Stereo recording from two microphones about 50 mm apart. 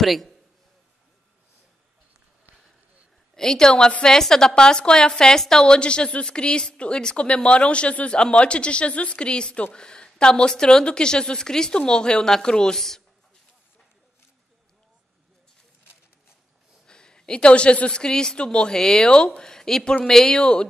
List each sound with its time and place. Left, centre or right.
0.0 s a man's voice: centre
3.3 s a woman's voice: centre
16.8 s a woman's voice: centre